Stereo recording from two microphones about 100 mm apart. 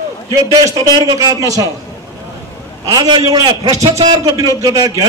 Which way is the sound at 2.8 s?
40° right (ahead or behind).